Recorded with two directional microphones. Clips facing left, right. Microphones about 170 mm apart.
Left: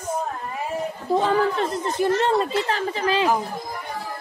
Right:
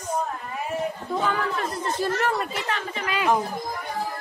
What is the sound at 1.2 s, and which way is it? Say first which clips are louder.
A woman's voice: left 4 dB; 30° left (ahead or behind).